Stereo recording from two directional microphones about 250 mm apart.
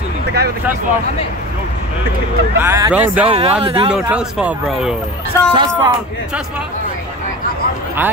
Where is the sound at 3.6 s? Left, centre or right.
Right.